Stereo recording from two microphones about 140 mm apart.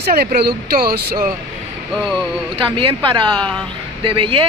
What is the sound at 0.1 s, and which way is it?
Speech, 90° right.